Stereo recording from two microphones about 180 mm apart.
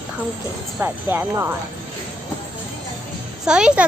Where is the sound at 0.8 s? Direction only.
10° right (ahead or behind).